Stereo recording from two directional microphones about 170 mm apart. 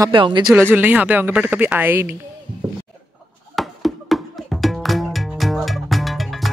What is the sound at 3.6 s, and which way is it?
Music, centre (ahead or behind).